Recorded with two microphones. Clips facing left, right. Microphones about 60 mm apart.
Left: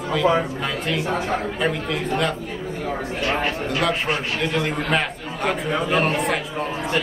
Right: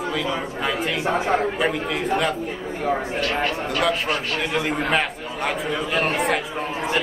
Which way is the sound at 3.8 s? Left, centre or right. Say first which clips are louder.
Even; centre.